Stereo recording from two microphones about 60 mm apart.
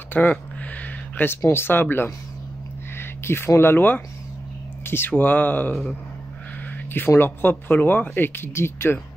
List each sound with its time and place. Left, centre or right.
0.1 s speech: left
7.2 s speech: left